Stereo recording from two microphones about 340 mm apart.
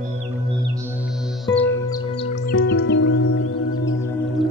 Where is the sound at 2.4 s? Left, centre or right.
Left.